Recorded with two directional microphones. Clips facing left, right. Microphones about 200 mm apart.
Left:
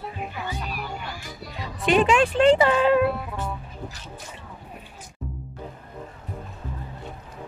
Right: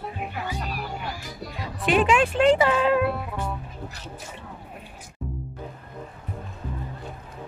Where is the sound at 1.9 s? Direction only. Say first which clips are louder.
Left 1 dB; 5° right (ahead or behind).